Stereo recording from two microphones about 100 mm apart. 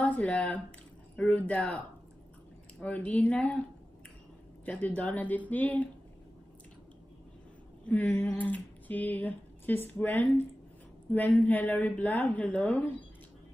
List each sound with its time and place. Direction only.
0.0 s speech: 15° left (ahead or behind)
2.8 s speech: 15° left (ahead or behind)
4.6 s speech: 15° left (ahead or behind)
7.9 s speech: 15° left (ahead or behind)